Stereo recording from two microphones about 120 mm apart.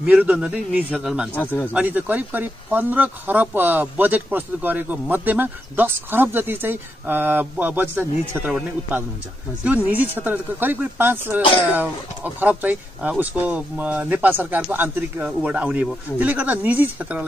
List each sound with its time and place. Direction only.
0.0 s speech: 10° right (ahead or behind)
1.3 s speech: 15° left (ahead or behind)
1.7 s speech: 15° right (ahead or behind)
9.6 s speech: 15° right (ahead or behind)